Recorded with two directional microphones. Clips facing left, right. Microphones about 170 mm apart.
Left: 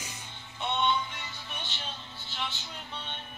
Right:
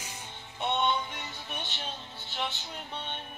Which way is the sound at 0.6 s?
50° right (ahead or behind).